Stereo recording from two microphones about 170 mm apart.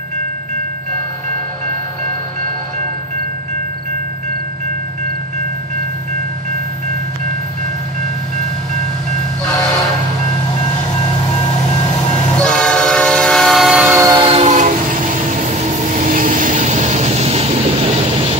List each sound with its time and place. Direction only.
12.4 s train: 5° left (ahead or behind)
13.9 s train: 25° right (ahead or behind)
14.5 s train: 50° right (ahead or behind); by 18.4 s 35° right (ahead or behind)